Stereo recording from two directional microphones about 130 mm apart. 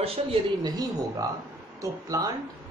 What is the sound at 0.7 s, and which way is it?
Speech, 30° right (ahead or behind).